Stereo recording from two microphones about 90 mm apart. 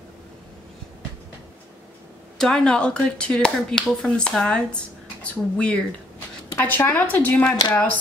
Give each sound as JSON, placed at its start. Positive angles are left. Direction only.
{"t": 2.3, "sound": "speech", "side_deg": 5}